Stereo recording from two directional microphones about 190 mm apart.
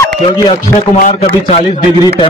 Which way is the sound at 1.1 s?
35° left (ahead or behind).